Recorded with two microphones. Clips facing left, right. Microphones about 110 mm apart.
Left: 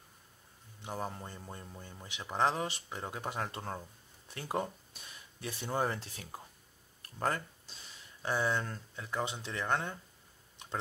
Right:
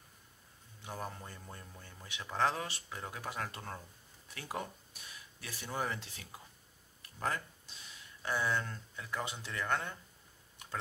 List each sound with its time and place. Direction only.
0.8 s speech: 25° left (ahead or behind)
7.0 s a sound: 40° left (ahead or behind)
8.2 s speech: 30° left (ahead or behind)